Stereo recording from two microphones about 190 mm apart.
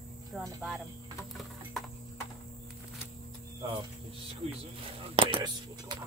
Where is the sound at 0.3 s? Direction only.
Centre (ahead or behind).